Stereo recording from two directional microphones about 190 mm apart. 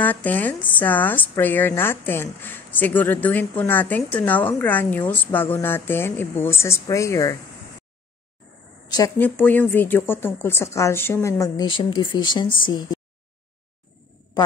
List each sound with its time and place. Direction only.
0.0 s speech: 10° left (ahead or behind)
8.9 s speech: 15° left (ahead or behind)